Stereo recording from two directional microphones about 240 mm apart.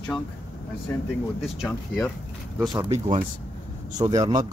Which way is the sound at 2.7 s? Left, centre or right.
Right.